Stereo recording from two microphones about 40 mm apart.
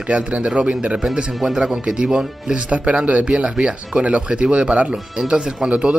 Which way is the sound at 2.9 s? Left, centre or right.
Right.